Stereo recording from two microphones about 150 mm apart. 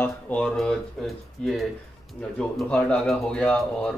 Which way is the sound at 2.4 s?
5° left (ahead or behind).